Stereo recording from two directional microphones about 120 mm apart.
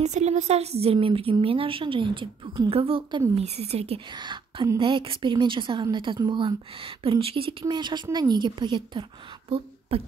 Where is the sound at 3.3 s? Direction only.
60° right (ahead or behind).